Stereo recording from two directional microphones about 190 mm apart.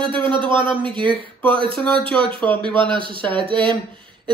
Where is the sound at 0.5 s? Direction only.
25° right (ahead or behind).